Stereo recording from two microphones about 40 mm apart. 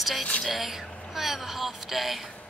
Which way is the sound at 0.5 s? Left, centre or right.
Centre.